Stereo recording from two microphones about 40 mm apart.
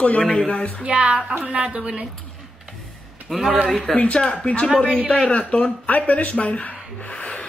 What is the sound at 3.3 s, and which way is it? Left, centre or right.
Speech, centre.